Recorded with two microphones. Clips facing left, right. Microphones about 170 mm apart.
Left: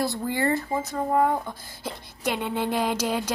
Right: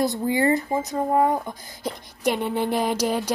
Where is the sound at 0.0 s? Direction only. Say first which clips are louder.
Right 4 dB; 20° right (ahead or behind).